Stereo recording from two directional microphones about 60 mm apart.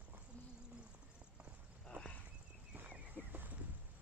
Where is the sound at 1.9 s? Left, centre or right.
Right.